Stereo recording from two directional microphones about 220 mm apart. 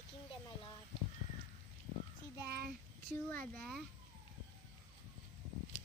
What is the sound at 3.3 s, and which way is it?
Speech, 5° left (ahead or behind).